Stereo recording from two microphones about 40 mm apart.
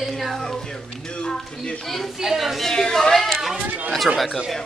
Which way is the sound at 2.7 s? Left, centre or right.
Centre.